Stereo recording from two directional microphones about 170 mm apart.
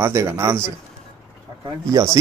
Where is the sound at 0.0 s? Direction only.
15° right (ahead or behind).